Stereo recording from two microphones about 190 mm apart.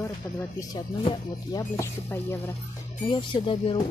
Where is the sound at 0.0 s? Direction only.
15° left (ahead or behind).